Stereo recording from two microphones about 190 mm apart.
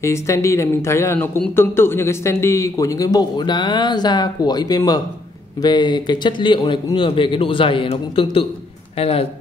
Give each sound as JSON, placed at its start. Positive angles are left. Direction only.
{"t": 0.0, "sound": "a man's voice", "side_deg": 15}